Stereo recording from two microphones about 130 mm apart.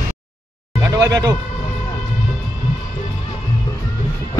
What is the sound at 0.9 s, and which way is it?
Speech, 25° right (ahead or behind).